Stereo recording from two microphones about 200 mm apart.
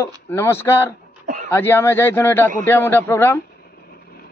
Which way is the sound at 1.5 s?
10° left (ahead or behind).